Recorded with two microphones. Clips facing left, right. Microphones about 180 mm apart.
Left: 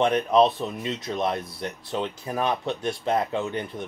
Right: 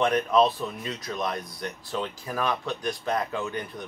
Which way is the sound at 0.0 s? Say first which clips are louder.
Left 2 dB; 25° left (ahead or behind).